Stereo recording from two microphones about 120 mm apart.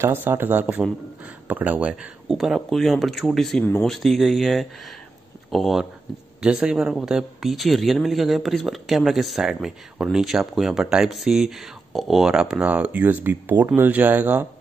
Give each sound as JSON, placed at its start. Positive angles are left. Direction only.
{"t": 0.0, "sound": "a man's voice", "side_deg": -20}